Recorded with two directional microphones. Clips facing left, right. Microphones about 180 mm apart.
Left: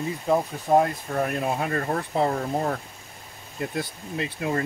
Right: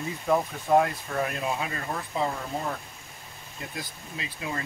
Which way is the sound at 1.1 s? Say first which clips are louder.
Left 4 dB; 50° left (ahead or behind).